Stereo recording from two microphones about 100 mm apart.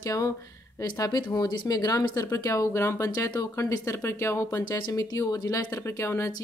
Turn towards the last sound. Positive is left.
turn(degrees=30)  # may be behind; listen again after turning